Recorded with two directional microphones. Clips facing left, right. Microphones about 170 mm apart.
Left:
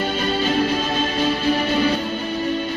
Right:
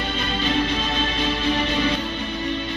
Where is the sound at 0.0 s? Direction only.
40° left (ahead or behind).